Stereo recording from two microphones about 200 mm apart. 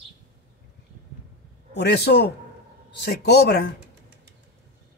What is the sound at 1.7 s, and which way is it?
Speech, 55° left (ahead or behind).